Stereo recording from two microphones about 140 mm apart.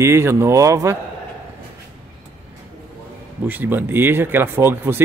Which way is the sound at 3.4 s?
15° right (ahead or behind).